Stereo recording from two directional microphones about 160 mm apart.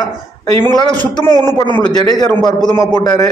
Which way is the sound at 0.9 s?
25° right (ahead or behind).